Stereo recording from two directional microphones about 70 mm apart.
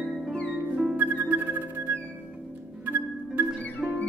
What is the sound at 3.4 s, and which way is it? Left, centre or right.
Music, centre.